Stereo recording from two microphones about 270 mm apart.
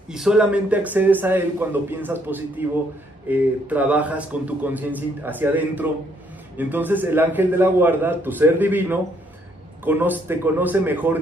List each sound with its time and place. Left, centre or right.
0.1 s a man's voice: centre